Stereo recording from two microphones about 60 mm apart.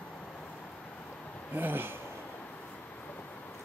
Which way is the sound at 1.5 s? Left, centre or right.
Right.